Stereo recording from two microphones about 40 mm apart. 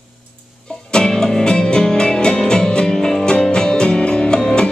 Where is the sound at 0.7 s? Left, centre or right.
Centre.